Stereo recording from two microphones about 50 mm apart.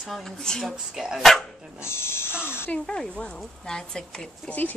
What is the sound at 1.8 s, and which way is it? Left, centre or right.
Speech, left.